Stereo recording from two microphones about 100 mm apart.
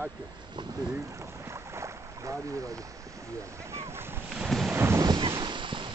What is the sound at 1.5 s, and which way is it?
Boat, 30° right (ahead or behind).